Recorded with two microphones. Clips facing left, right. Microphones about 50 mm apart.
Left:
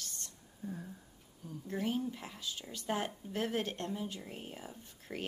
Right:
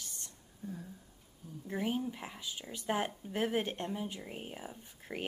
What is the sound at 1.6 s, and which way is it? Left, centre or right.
Speech, centre.